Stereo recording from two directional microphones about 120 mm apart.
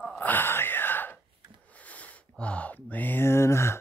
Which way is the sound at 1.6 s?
10° left (ahead or behind).